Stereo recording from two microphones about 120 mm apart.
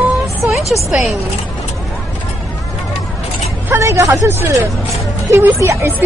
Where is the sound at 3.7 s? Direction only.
25° right (ahead or behind).